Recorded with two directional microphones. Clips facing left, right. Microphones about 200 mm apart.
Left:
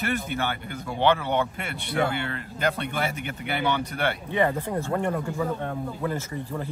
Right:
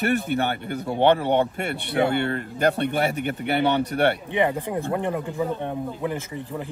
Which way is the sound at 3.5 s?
60° right (ahead or behind).